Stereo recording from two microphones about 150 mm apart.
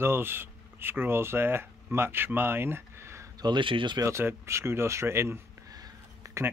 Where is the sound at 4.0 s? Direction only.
15° right (ahead or behind).